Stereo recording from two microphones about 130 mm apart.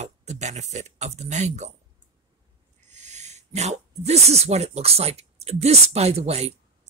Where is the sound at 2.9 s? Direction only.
65° right (ahead or behind).